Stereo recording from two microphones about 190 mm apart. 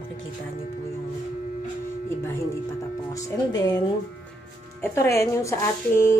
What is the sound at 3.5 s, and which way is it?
Speech, 20° left (ahead or behind).